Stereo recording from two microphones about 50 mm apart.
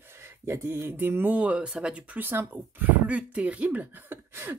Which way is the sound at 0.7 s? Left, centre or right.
Right.